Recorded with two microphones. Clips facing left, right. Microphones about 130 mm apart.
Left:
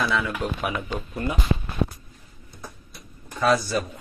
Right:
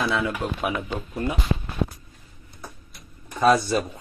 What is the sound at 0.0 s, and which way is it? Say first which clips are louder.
Speech: even; 25° right (ahead or behind).